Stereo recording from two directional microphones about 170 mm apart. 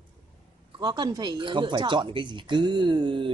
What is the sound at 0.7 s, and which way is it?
Speech, 25° right (ahead or behind).